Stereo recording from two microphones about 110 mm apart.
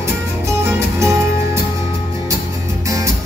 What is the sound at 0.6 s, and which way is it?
Music, 25° right (ahead or behind).